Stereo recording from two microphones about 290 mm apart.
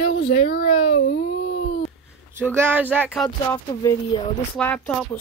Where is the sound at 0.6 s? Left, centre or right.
Left.